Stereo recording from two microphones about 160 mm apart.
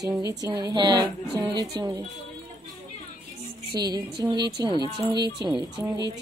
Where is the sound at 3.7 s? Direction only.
25° right (ahead or behind).